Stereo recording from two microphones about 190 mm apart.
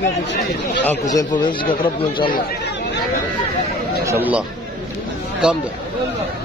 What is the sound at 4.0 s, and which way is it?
Speech, 10° right (ahead or behind).